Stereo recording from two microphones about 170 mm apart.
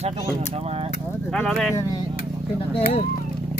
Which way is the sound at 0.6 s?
40° right (ahead or behind).